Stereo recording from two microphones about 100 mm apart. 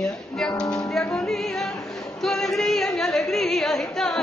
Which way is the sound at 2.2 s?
Centre (ahead or behind).